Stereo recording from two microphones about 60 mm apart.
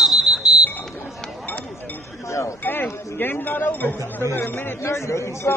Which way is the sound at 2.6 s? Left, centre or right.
Left.